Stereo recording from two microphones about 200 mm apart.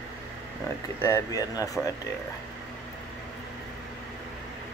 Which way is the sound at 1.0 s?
15° left (ahead or behind).